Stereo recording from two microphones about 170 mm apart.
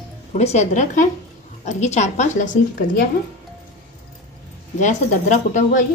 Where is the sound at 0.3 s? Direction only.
40° left (ahead or behind).